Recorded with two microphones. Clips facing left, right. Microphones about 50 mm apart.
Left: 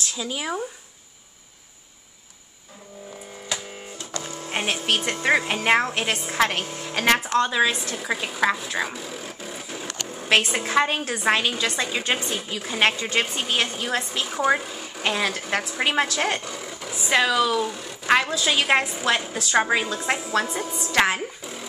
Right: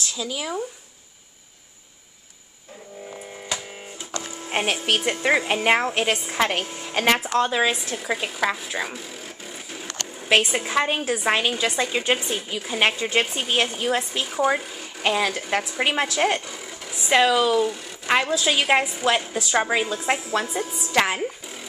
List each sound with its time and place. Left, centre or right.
0.1 s speech: left
4.0 s music: centre
5.0 s a woman's voice: centre
14.2 s speech: centre
21.2 s zipper: centre